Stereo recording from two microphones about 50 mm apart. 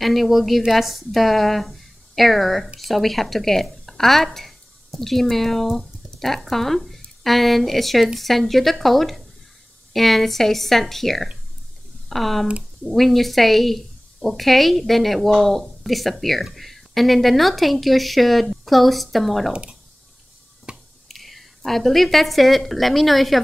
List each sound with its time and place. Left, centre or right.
0.0 s a woman's voice: centre
19.5 s speech: centre
20.7 s finger snapping: centre
21.1 s a woman's voice: centre